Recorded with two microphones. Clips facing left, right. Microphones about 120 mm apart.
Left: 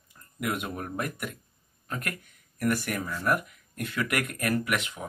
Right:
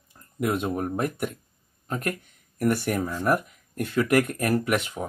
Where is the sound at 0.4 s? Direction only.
30° right (ahead or behind).